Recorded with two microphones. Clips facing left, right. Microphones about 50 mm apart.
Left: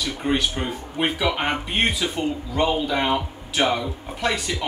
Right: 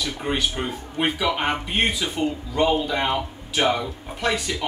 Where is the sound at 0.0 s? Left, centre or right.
Centre.